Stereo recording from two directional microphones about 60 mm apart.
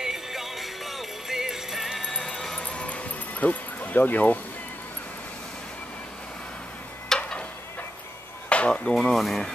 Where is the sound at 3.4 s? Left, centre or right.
Left.